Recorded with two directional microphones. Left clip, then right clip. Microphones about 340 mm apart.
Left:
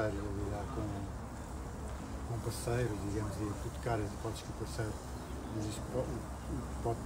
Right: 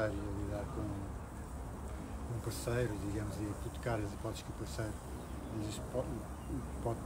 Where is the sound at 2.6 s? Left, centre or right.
Centre.